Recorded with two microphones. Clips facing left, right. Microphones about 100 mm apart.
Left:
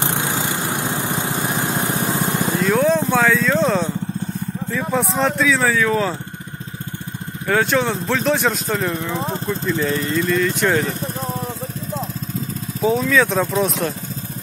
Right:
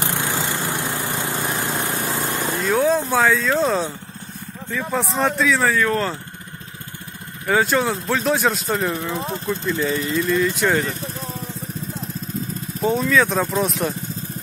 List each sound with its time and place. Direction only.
0.0 s vehicle: 20° left (ahead or behind)
2.6 s a sound: centre (ahead or behind)
3.1 s speech: centre (ahead or behind)
7.4 s speech: centre (ahead or behind)
12.8 s speech: centre (ahead or behind)